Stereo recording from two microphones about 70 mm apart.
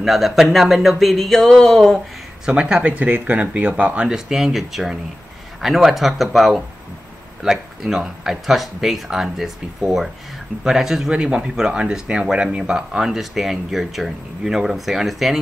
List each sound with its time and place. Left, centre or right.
0.0 s speech: centre
2.4 s speech: centre